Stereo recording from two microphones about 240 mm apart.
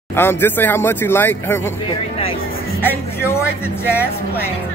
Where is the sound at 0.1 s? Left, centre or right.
Centre.